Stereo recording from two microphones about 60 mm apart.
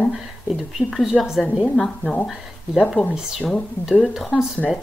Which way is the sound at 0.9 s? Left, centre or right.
Centre.